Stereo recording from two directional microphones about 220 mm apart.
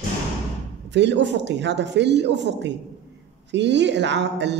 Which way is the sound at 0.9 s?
55° right (ahead or behind).